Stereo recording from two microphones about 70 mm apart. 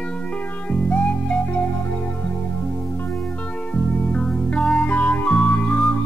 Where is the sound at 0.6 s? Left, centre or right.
Centre.